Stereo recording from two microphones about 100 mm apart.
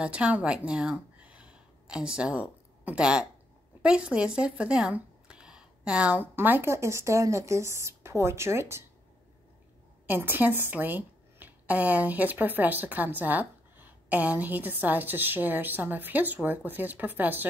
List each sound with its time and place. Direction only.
0.0 s a woman's voice: 10° right (ahead or behind)
1.2 s a sound: 10° right (ahead or behind)
3.8 s speech: 10° right (ahead or behind); by 8.8 s 25° right (ahead or behind)
10.0 s a woman's voice: 20° right (ahead or behind)